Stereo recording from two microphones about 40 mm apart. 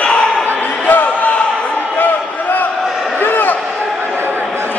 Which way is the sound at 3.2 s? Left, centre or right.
Left.